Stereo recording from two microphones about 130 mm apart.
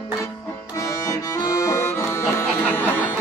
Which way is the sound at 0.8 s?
25° left (ahead or behind).